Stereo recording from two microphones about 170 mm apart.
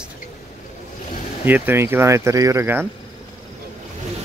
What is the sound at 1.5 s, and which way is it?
Speech, 10° right (ahead or behind).